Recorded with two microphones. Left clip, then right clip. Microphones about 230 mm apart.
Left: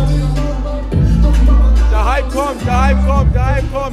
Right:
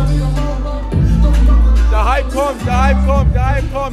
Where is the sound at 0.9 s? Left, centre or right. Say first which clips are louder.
Even; centre.